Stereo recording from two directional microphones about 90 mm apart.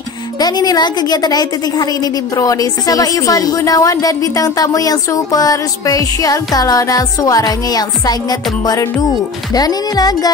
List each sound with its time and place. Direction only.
0.4 s a woman's voice: 50° left (ahead or behind)
9.5 s a woman's voice: 45° left (ahead or behind)